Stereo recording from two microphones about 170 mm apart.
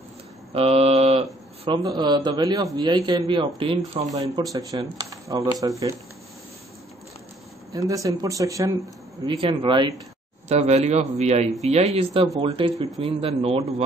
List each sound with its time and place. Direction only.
0.6 s speech: 35° right (ahead or behind)
4.1 s speech: 20° right (ahead or behind)
7.9 s speech: 20° right (ahead or behind)
10.5 s a man's voice: 40° right (ahead or behind)